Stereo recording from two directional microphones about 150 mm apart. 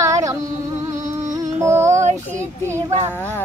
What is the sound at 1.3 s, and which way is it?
Music, 20° right (ahead or behind).